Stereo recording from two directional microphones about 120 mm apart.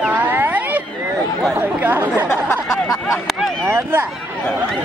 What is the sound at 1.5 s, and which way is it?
Chatter, 15° right (ahead or behind).